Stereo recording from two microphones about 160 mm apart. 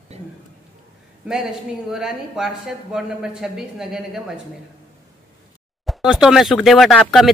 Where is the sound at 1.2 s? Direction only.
5° right (ahead or behind).